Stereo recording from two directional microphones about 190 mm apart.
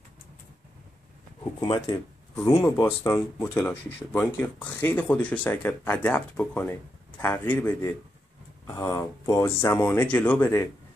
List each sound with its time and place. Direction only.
1.4 s speech: 20° left (ahead or behind)